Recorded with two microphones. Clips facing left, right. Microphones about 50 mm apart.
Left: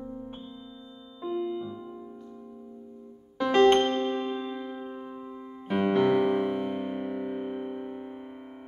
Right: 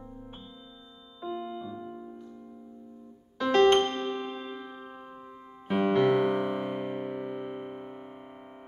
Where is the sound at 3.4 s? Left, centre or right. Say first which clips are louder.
Left 1 dB; centre.